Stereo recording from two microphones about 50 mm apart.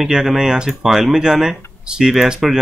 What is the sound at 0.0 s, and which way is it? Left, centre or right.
Speech, centre.